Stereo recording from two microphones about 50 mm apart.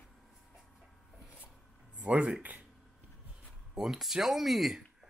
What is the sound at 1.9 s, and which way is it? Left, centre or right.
Speech, right.